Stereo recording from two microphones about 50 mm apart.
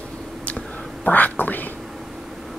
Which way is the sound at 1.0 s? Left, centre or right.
Left.